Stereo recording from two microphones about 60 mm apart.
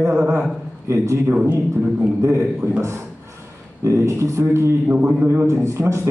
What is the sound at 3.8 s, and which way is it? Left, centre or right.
A man's voice, right.